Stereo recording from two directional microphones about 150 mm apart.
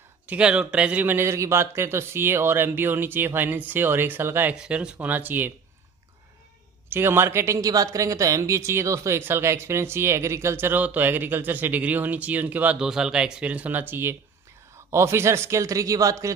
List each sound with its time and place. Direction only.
0.3 s speech: 5° right (ahead or behind)
6.9 s a man's voice: 15° right (ahead or behind)